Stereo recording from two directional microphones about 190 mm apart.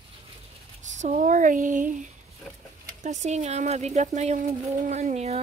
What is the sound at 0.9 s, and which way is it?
Speech, 40° right (ahead or behind).